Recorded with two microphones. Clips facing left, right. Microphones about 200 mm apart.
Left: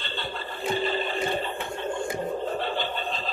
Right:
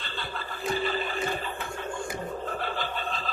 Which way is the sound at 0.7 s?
30° left (ahead or behind).